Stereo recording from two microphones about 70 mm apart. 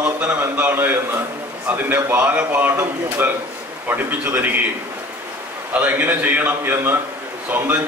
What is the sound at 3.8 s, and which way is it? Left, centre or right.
Speech, right.